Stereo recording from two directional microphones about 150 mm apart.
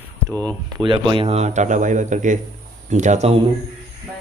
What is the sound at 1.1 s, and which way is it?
A man's voice, 40° right (ahead or behind).